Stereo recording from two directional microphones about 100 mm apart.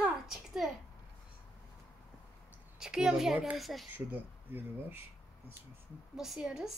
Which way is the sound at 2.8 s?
5° right (ahead or behind).